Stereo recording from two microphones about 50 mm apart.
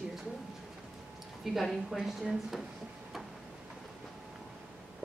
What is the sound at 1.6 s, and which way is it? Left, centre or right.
Speech, centre.